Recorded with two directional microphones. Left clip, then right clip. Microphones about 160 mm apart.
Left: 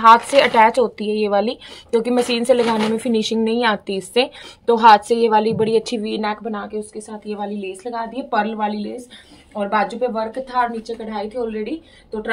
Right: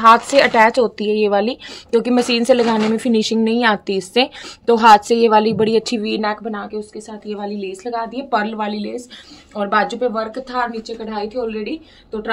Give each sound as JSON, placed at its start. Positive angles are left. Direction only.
{"t": 0.0, "sound": "a woman's voice", "side_deg": -20}
{"t": 10.8, "sound": "a woman's voice", "side_deg": -20}